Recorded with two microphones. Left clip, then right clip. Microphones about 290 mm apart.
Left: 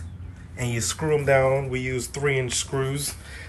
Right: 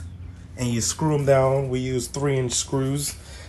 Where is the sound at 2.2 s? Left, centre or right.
Right.